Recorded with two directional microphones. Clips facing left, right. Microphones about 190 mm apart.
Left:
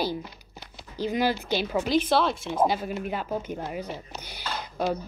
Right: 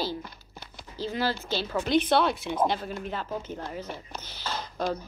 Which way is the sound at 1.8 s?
5° left (ahead or behind).